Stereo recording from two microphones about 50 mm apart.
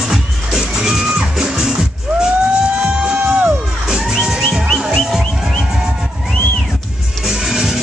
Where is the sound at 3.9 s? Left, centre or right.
Centre.